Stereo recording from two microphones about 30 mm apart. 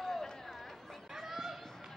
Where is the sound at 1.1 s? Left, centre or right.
Centre.